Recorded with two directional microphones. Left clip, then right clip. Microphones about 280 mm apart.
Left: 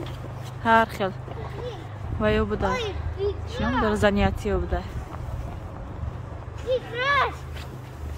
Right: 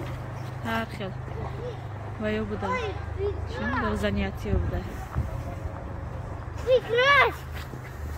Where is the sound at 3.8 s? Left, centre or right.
Centre.